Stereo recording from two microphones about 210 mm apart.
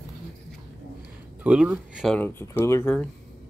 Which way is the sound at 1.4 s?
5° right (ahead or behind).